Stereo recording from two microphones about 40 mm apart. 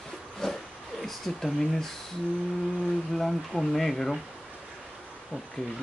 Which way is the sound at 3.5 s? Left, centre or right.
Centre.